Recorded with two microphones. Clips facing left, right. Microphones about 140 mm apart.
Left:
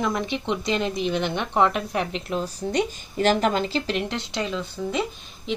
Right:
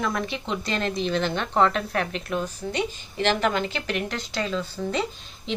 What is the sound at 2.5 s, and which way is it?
Speech, 40° left (ahead or behind).